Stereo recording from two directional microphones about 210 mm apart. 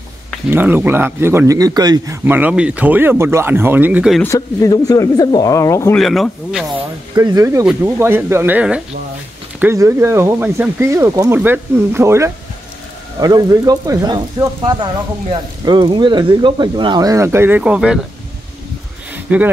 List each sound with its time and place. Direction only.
0.5 s speech: 10° right (ahead or behind)
4.2 s speech: 15° left (ahead or behind)
5.9 s speech: centre (ahead or behind)
7.2 s speech: 15° right (ahead or behind)
19.1 s a sound: 5° right (ahead or behind)